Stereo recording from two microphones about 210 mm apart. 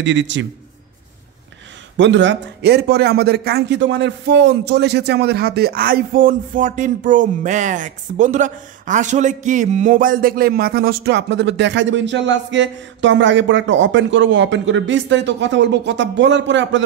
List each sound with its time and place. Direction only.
0.0 s a man's voice: 60° right (ahead or behind)
2.0 s speech: 55° right (ahead or behind)